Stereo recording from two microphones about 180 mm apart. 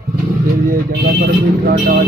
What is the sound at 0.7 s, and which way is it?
Speech, 55° right (ahead or behind).